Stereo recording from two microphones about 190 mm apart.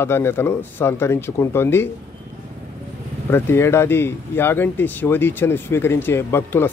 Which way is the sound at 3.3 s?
10° left (ahead or behind).